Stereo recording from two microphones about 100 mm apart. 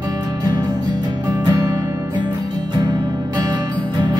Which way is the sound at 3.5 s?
50° right (ahead or behind).